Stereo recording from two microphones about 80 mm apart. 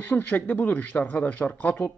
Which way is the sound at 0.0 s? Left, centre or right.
Left.